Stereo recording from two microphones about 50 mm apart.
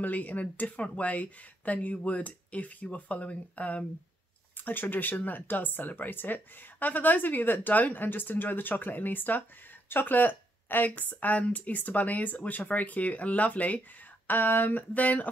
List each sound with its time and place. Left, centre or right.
0.0 s speech: left
4.6 s speech: left